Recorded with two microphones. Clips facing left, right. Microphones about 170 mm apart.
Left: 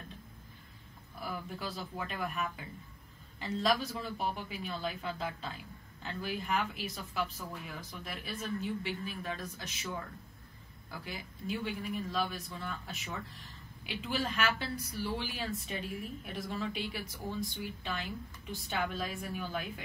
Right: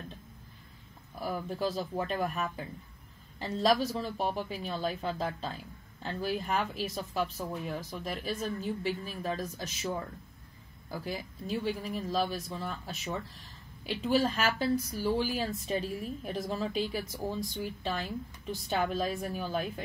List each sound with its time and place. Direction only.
1.2 s speech: 40° right (ahead or behind)